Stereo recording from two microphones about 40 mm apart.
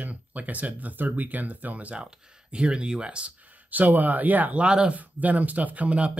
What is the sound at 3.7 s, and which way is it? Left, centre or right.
Speech, right.